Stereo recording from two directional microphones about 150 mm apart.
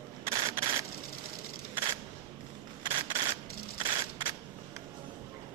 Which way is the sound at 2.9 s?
35° right (ahead or behind).